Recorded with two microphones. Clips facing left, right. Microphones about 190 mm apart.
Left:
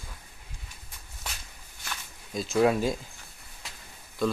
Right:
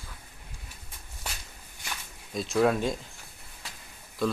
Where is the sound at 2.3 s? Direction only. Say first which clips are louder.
Left 1 dB; centre (ahead or behind).